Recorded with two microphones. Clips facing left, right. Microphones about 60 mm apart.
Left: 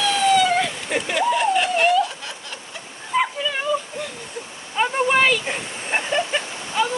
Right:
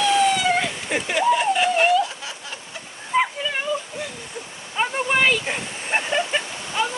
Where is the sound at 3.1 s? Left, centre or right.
Centre.